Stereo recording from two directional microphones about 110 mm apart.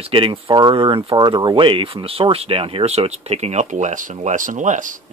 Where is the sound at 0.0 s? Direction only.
55° right (ahead or behind).